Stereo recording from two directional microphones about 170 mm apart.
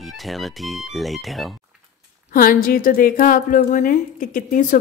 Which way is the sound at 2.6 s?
55° left (ahead or behind).